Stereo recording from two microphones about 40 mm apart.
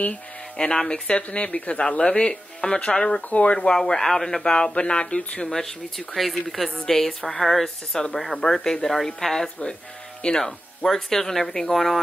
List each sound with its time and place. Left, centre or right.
0.1 s speech: left
3.2 s speech: left
3.5 s speech: centre
5.5 s speech: centre